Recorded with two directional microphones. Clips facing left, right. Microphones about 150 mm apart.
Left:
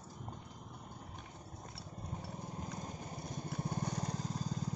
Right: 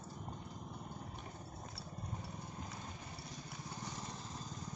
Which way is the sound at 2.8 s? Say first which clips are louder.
Left 5 dB; 40° left (ahead or behind).